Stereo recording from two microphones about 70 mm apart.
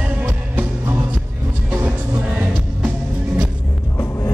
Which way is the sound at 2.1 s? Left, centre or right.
Right.